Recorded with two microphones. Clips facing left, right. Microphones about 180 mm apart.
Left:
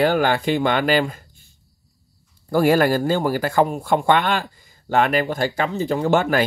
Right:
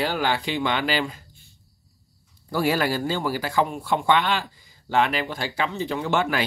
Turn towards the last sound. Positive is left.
turn(degrees=45)  # may be behind; listen again after turning